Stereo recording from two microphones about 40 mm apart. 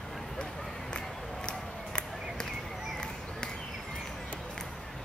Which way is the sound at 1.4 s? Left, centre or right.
Left.